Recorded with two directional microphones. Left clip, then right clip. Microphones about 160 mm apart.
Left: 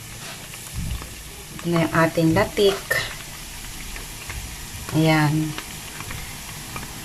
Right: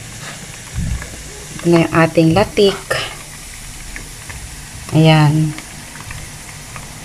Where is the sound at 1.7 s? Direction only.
5° right (ahead or behind).